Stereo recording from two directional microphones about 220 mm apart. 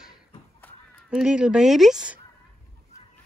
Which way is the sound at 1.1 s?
5° right (ahead or behind).